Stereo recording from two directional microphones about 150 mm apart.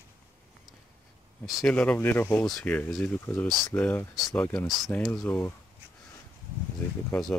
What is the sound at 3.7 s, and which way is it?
Speech, 10° left (ahead or behind).